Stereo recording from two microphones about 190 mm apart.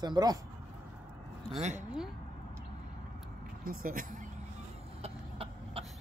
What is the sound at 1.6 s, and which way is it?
Speech, 40° right (ahead or behind).